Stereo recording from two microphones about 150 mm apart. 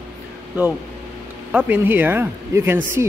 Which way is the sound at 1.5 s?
10° right (ahead or behind).